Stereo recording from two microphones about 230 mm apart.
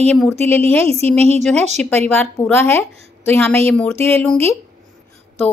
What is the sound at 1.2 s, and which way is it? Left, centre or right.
Speech, right.